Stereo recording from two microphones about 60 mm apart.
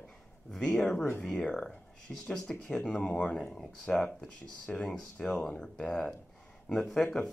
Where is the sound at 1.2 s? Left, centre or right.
Centre.